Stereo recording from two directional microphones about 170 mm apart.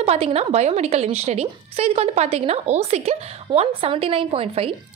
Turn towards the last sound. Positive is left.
turn(degrees=-35)  # may be behind; listen again after turning